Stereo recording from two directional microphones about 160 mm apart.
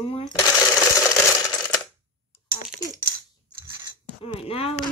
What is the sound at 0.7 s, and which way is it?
Coin, 20° left (ahead or behind).